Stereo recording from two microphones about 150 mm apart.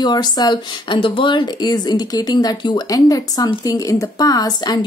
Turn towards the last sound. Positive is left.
turn(degrees=25)  # may be behind; listen again after turning